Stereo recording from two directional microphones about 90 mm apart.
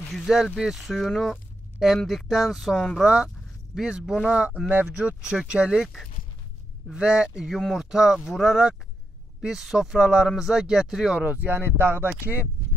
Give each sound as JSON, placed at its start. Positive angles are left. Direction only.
{"t": 0.1, "sound": "speech", "side_deg": 0}
{"t": 6.9, "sound": "speech", "side_deg": -10}
{"t": 7.5, "sound": "speech", "side_deg": 0}
{"t": 11.2, "sound": "speech", "side_deg": -20}